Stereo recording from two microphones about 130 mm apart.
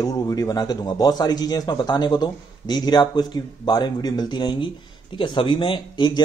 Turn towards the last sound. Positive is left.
turn(degrees=35)  # may be behind; listen again after turning